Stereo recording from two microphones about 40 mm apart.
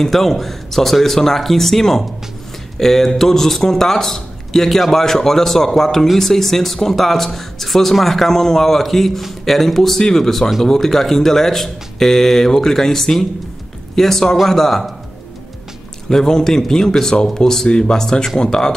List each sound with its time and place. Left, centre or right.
0.0 s speech: centre
16.1 s speech: centre